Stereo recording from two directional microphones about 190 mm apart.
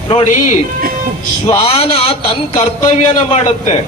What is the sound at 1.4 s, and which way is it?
A man's voice, 30° left (ahead or behind).